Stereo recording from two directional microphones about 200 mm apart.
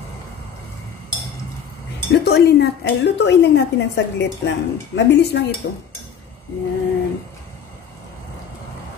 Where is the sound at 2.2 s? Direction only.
55° left (ahead or behind).